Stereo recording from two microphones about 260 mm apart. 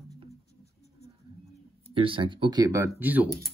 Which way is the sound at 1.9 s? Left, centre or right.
Centre.